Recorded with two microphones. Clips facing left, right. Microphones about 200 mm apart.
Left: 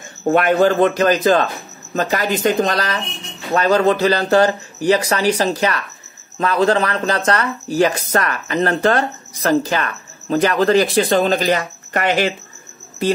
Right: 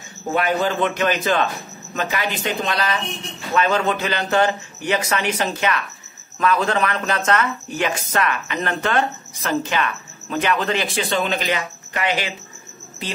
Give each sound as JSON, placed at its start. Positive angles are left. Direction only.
{"t": 0.3, "sound": "speech", "side_deg": 55}